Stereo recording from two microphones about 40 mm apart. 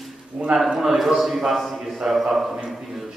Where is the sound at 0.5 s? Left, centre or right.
Centre.